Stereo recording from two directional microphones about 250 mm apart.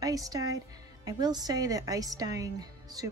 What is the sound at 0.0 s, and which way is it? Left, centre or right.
Music, centre.